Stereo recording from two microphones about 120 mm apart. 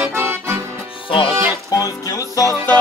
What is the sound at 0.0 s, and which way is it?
Accordion, 15° right (ahead or behind).